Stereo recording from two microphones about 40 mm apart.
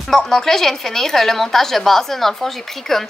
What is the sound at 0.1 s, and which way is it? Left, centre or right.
A woman's voice, centre.